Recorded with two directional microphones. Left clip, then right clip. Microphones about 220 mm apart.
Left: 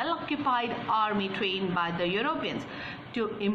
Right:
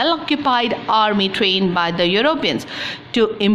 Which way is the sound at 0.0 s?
50° right (ahead or behind).